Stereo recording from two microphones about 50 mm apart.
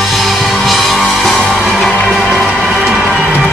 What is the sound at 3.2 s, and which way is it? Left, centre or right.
Music, centre.